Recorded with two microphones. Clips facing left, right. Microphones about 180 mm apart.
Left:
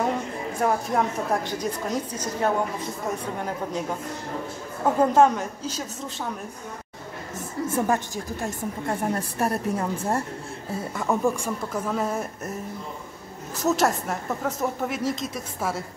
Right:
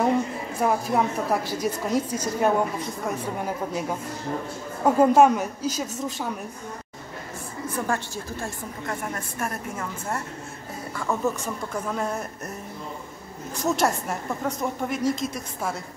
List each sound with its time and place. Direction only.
0.6 s a woman's voice: 5° right (ahead or behind)
4.8 s a woman's voice: 10° right (ahead or behind)
7.7 s a woman's voice: 20° left (ahead or behind)
9.0 s a woman's voice: 35° left (ahead or behind)
11.0 s speech: 15° left (ahead or behind)
13.7 s speech: centre (ahead or behind)